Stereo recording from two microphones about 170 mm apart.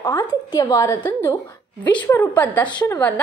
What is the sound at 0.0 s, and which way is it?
A woman's voice, 15° left (ahead or behind).